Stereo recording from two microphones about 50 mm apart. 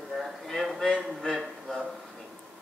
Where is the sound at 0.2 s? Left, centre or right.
Centre.